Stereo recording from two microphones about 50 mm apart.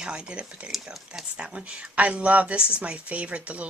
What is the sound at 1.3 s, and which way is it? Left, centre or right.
Speech, right.